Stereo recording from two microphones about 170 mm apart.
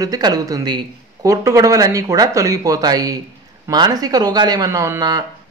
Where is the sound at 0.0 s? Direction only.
20° right (ahead or behind).